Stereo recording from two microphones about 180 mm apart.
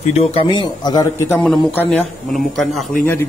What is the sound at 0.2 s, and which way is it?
Speech, 30° left (ahead or behind).